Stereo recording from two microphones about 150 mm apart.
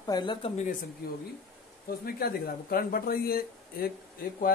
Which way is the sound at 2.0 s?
90° left.